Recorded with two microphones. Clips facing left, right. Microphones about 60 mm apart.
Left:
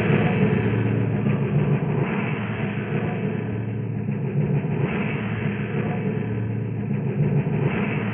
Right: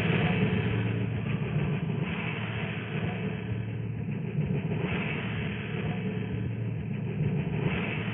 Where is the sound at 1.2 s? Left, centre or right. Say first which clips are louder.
Left 9 dB; left.